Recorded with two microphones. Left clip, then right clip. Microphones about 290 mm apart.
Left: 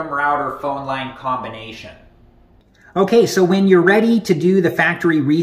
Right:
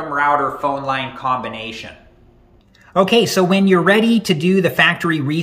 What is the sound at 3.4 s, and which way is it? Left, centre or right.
Speech, right.